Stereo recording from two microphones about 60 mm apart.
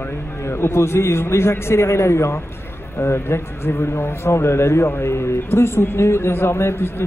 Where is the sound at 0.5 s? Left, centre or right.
Left.